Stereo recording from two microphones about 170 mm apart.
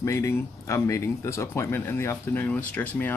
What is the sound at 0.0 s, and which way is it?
Speech, 15° left (ahead or behind).